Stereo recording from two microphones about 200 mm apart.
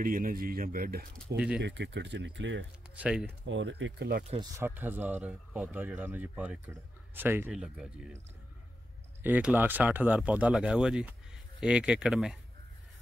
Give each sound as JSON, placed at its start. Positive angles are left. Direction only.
{"t": 0.0, "sound": "speech", "side_deg": -45}
{"t": 1.1, "sound": "speech", "side_deg": -5}
{"t": 1.6, "sound": "speech", "side_deg": -60}
{"t": 3.0, "sound": "speech", "side_deg": -5}
{"t": 3.4, "sound": "speech", "side_deg": -65}
{"t": 4.6, "sound": "speech", "side_deg": -10}
{"t": 9.2, "sound": "speech", "side_deg": -10}